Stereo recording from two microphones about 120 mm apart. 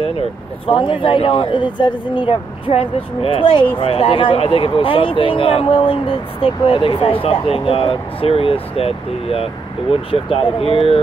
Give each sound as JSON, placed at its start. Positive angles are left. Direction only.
{"t": 0.7, "sound": "speech", "side_deg": 45}